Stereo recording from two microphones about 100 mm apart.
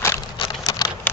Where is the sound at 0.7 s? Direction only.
45° left (ahead or behind).